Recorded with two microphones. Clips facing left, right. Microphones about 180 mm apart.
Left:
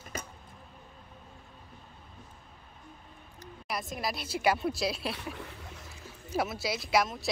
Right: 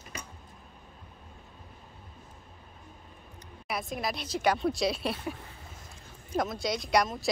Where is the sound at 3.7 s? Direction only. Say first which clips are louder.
Right 2 dB; centre (ahead or behind).